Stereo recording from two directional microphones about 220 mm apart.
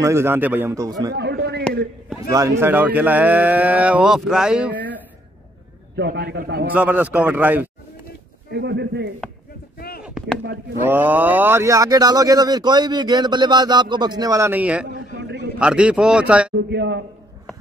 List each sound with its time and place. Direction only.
0.0 s speech: 10° right (ahead or behind)
1.1 s a sound: 50° right (ahead or behind)
2.1 s speech: 15° right (ahead or behind)
5.9 s a man's voice: 50° right (ahead or behind)
6.7 s speech: 5° right (ahead or behind)
8.5 s a man's voice: 50° right (ahead or behind)
9.8 s a sound: 45° left (ahead or behind)
10.0 s chop: centre (ahead or behind)
10.4 s a man's voice: 50° right (ahead or behind)
10.9 s speech: 10° right (ahead or behind)
15.1 s a sound: 50° right (ahead or behind)
15.6 s speech: 5° right (ahead or behind)
16.5 s a man's voice: 50° right (ahead or behind)